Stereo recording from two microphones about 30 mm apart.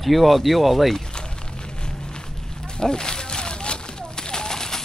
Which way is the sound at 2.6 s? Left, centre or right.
Left.